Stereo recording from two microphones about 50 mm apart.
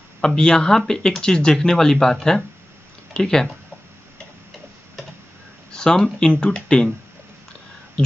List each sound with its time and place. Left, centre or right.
0.4 s speech: centre
5.7 s speech: centre